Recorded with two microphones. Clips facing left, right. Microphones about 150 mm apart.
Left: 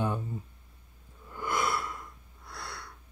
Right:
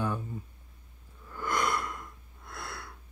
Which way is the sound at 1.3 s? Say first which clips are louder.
Even; 15° left (ahead or behind).